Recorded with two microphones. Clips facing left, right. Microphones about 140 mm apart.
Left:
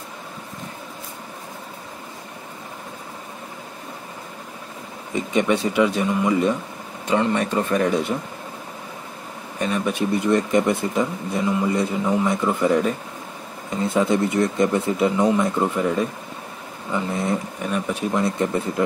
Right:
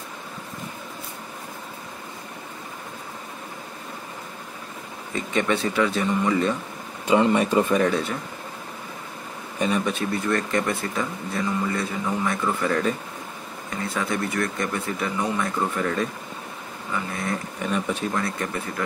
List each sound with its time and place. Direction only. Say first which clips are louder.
5.1 s speech: left 4 dB; 15° left (ahead or behind)
7.1 s speech: right 2 dB; 10° right (ahead or behind)
7.7 s speech: left 1 dB; 5° left (ahead or behind)
9.8 s speech: left 4 dB; 15° left (ahead or behind)
17.6 s speech: left 1 dB; 5° left (ahead or behind)
18.1 s speech: left 6 dB; 20° left (ahead or behind)